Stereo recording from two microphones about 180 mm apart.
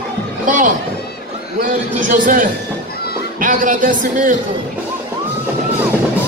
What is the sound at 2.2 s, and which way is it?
A man's voice, 50° right (ahead or behind).